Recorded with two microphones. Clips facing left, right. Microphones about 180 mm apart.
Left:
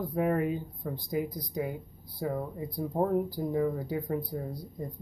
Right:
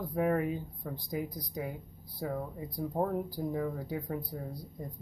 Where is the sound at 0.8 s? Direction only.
15° left (ahead or behind).